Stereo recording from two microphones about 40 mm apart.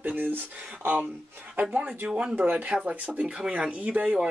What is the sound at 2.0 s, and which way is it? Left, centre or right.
Speech, right.